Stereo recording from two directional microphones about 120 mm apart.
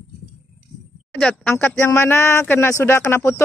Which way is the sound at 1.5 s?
20° left (ahead or behind).